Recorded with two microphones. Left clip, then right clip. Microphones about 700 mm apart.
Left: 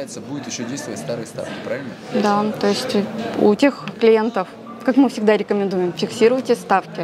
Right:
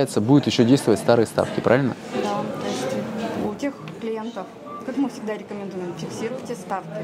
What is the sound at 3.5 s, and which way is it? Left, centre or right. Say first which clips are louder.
Speech: left 11 dB; left.